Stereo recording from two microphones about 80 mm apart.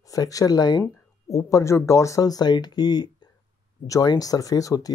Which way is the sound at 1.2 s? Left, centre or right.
Left.